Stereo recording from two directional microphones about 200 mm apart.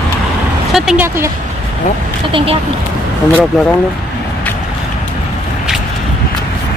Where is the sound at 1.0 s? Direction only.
15° right (ahead or behind).